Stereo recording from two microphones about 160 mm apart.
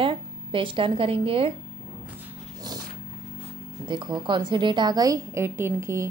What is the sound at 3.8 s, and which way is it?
Speech, 30° right (ahead or behind).